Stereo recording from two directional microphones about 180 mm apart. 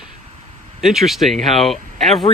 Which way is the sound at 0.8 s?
Centre (ahead or behind).